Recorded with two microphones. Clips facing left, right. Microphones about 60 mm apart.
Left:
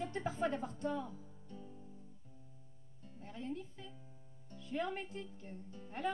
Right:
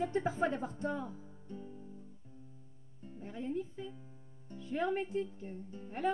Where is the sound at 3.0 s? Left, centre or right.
Right.